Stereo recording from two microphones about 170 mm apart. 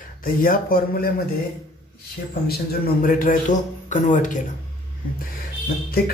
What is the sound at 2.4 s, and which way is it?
Speech, 65° left (ahead or behind).